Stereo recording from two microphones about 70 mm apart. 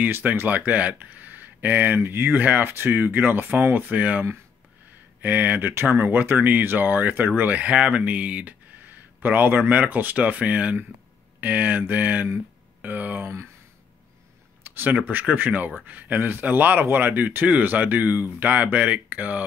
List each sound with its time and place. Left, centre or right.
0.0 s speech: right
14.6 s speech: right